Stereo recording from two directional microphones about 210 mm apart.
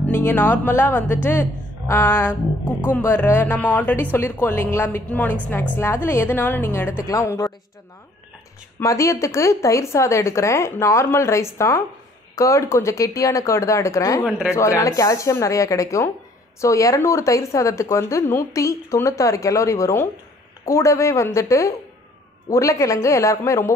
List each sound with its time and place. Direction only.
0.1 s speech: 10° left (ahead or behind)
8.7 s speech: 15° left (ahead or behind)